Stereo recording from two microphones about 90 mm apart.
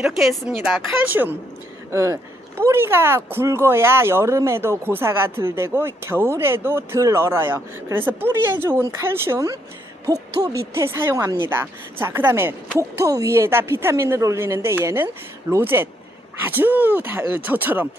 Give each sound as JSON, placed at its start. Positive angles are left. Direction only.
{"t": 0.0, "sound": "speech", "side_deg": -5}
{"t": 1.9, "sound": "speech", "side_deg": -30}